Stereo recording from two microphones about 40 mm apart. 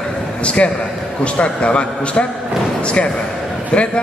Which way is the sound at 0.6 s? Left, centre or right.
Left.